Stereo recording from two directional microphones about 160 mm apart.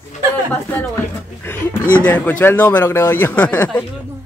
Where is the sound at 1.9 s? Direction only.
10° left (ahead or behind).